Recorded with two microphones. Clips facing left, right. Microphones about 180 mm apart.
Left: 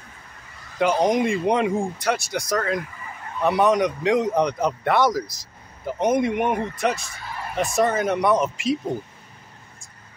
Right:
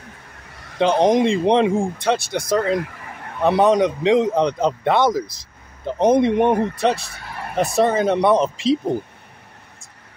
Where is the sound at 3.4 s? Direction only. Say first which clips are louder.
Right 4 dB; 25° right (ahead or behind).